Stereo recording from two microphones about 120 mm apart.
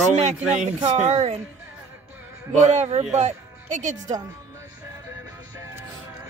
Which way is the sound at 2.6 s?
65° right (ahead or behind).